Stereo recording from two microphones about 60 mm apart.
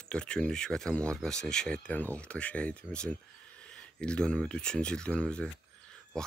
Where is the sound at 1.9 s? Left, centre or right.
Left.